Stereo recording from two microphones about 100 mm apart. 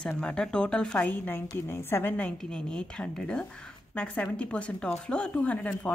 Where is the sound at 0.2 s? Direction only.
10° left (ahead or behind).